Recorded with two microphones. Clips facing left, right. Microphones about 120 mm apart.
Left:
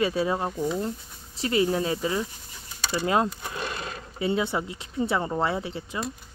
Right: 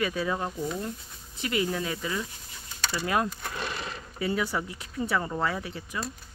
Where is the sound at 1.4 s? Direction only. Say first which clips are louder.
Left 5 dB; 30° left (ahead or behind).